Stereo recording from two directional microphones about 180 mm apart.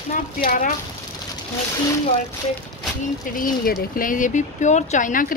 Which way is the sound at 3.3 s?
50° left (ahead or behind).